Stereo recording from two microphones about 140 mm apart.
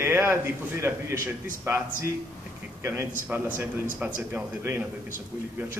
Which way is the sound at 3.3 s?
15° right (ahead or behind).